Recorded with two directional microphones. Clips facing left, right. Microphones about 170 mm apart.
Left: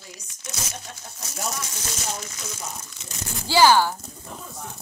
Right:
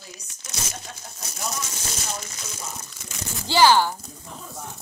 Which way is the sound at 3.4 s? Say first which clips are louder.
Left 1 dB; 10° left (ahead or behind).